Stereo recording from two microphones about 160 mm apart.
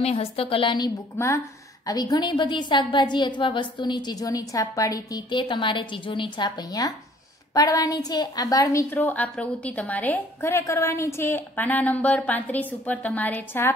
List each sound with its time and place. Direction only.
0.0 s a woman's voice: 40° left (ahead or behind); by 13.7 s 15° left (ahead or behind)